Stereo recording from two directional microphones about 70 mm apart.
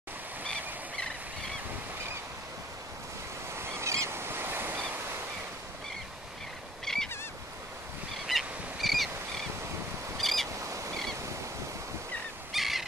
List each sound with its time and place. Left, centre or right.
3.5 s goose: right
4.9 s waves: right
6.8 s a sound: centre
8.3 s a sound: centre
10.1 s bird: centre
10.6 s goose: right
12.5 s owl: centre